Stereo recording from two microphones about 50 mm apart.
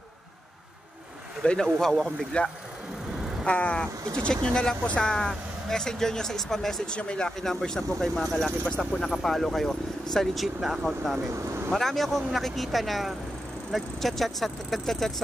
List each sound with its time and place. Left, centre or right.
1.4 s speech: centre
3.4 s speech: left
4.2 s speech: centre
6.9 s speech: centre
8.6 s speech: centre
9.0 s speech: centre
10.3 s speech: centre
11.3 s vehicle: right
11.7 s speech: centre